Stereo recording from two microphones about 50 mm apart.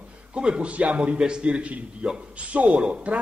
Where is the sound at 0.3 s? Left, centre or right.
Right.